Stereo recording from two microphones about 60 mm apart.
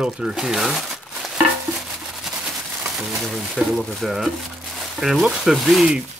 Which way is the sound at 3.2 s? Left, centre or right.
Centre.